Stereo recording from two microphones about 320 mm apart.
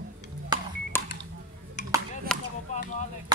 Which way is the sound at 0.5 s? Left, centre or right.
Centre.